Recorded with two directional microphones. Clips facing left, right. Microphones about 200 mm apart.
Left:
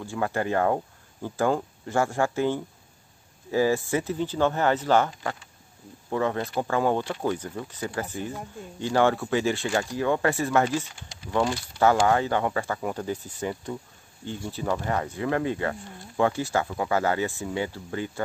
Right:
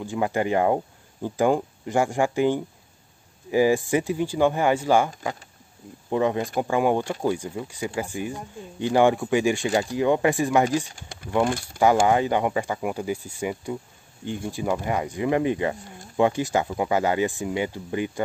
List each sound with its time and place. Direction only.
0.0 s speech: 15° right (ahead or behind)
11.0 s speech: 55° right (ahead or behind)
12.1 s speech: 15° right (ahead or behind)